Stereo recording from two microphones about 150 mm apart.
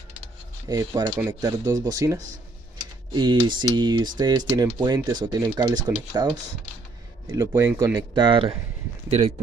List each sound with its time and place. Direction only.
0.7 s speech: 25° right (ahead or behind)
7.2 s speech: 20° right (ahead or behind)
8.1 s speech: 30° right (ahead or behind)
9.1 s speech: 50° right (ahead or behind)